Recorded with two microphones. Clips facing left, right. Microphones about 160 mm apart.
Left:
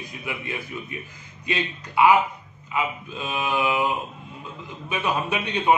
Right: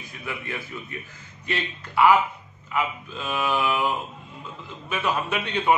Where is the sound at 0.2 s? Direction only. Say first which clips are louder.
Even; 15° left (ahead or behind).